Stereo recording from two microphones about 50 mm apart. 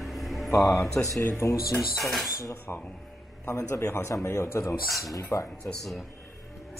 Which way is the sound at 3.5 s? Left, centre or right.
Left.